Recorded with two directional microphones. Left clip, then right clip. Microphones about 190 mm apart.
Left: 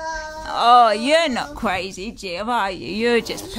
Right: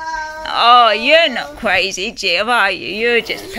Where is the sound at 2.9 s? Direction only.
25° left (ahead or behind).